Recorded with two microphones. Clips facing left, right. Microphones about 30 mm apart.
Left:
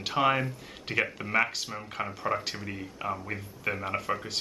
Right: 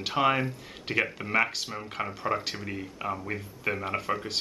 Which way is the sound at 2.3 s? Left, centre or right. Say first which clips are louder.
Right 1 dB; right.